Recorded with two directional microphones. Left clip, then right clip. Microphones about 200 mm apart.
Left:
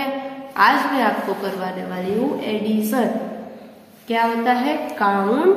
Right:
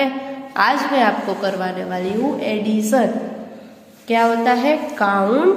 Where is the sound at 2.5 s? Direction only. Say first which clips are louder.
Right 4 dB; 30° right (ahead or behind).